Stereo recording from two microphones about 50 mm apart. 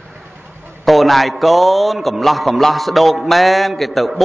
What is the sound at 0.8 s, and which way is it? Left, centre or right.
A man's voice, centre.